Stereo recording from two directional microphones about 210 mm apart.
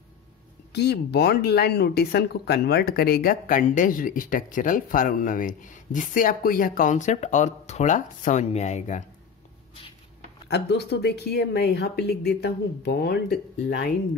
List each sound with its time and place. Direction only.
0.7 s speech: 50° left (ahead or behind); by 9.0 s 35° left (ahead or behind)
10.5 s a woman's voice: 50° left (ahead or behind)